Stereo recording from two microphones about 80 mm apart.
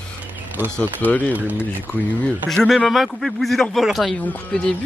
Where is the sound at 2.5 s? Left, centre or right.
Centre.